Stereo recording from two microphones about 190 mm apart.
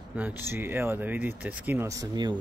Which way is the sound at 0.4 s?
10° right (ahead or behind).